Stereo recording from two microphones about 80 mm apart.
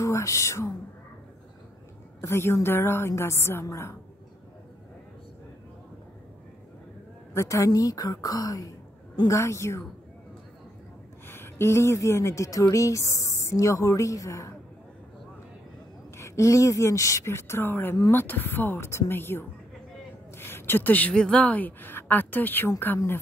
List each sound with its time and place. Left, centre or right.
0.0 s speech: left
2.2 s speech: left
7.3 s speech: left
9.3 s speech: left
11.2 s speech: left
16.2 s a woman's voice: left
20.3 s a sound: left
21.1 s a woman's voice: centre; by 22.7 s left